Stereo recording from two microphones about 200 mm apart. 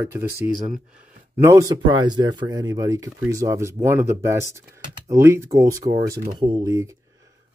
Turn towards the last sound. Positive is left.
turn(degrees=-15)  # may be behind; listen again after turning